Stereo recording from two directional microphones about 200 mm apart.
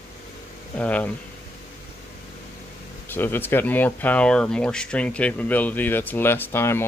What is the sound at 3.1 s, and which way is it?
Speech, 10° left (ahead or behind).